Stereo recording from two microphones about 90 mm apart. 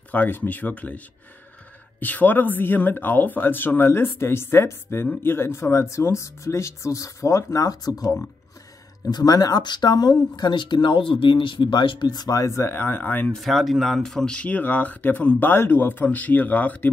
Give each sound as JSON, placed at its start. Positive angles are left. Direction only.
{"t": 0.1, "sound": "speech", "side_deg": 20}
{"t": 9.1, "sound": "speech", "side_deg": 50}
{"t": 13.3, "sound": "speech", "side_deg": 0}